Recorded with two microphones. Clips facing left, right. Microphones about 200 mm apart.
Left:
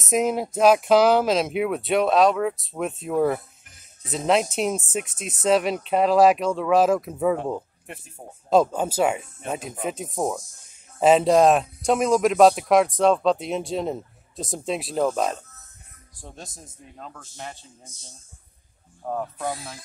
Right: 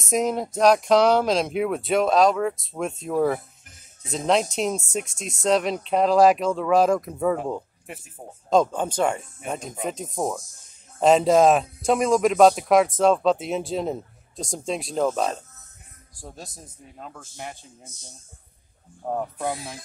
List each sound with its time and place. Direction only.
0.0 s a man's voice: centre (ahead or behind)
19.0 s a man's voice: 15° right (ahead or behind)